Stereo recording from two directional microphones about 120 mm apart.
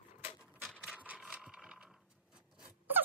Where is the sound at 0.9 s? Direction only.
10° right (ahead or behind).